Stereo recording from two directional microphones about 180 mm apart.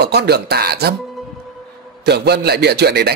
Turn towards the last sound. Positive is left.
turn(degrees=-65)  # may be behind; listen again after turning